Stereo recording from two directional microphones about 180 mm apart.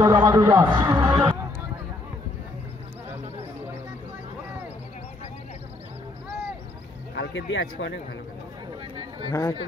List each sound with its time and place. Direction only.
0.0 s a man's voice: 15° right (ahead or behind)
7.2 s speech: 90° left
9.3 s speech: 15° left (ahead or behind)